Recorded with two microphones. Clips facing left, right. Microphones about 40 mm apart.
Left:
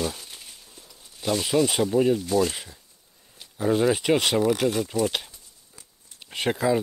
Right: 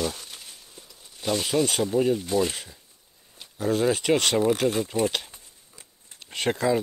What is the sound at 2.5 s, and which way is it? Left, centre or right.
Speech, centre.